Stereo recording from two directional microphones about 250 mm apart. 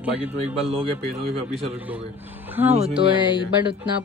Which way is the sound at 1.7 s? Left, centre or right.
Centre.